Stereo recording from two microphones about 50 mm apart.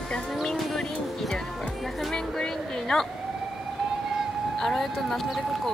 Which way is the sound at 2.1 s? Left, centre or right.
Centre.